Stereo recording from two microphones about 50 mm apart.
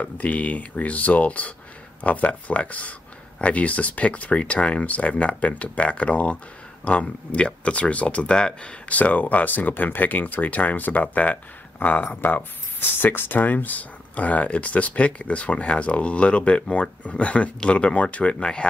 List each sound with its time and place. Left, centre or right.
0.0 s speech: left
8.8 s speech: left